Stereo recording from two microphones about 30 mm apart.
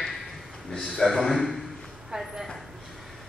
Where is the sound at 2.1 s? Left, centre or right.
Right.